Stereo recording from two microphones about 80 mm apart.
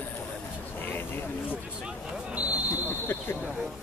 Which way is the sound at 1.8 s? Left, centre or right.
Centre.